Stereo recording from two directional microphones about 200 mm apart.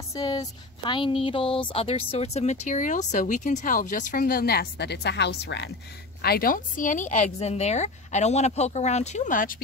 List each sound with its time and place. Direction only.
0.1 s a woman's voice: 20° left (ahead or behind); by 5.7 s 60° left (ahead or behind)
6.2 s a woman's voice: 50° left (ahead or behind)